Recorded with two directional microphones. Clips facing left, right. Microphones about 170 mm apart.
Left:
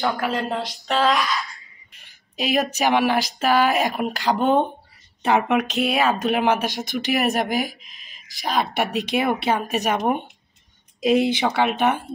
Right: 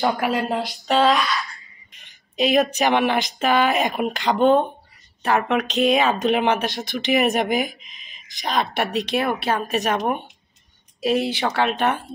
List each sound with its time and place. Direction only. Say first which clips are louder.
0.0 s speech: right 2 dB; 20° right (ahead or behind)
0.3 s speech: right 2 dB; centre (ahead or behind)
2.3 s speech: right 4 dB; 5° left (ahead or behind)
5.2 s speech: left 1 dB; 20° left (ahead or behind)
5.6 s speech: right 2 dB; 5° left (ahead or behind)